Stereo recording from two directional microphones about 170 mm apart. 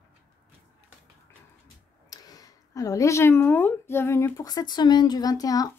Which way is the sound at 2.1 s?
20° left (ahead or behind).